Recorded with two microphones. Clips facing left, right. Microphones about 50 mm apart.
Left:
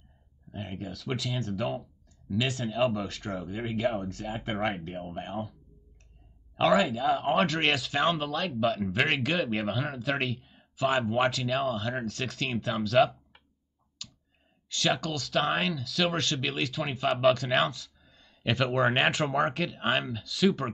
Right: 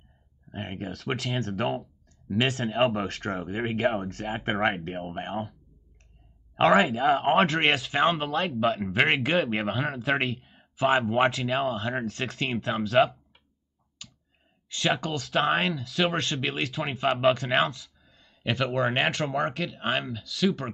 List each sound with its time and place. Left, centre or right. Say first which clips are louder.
0.5 s speech: right 3 dB; right
0.9 s speech: right 3 dB; right
2.5 s speech: right 3 dB; right
3.5 s speech: right 3 dB; right
6.7 s speech: right 3 dB; right
7.9 s speech: right 3 dB; right
8.5 s speech: right 2 dB; right
11.2 s speech: right 2 dB; centre
14.0 s clicking: left 1 dB; right
14.7 s speech: right 2 dB; right
17.6 s speech: right 1 dB; centre